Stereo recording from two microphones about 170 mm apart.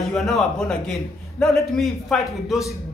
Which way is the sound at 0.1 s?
Centre (ahead or behind).